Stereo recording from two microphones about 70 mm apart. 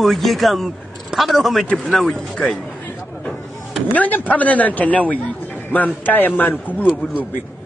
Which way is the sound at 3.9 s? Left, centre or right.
Left.